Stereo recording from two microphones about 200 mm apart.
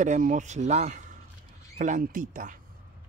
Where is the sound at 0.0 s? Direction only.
40° right (ahead or behind).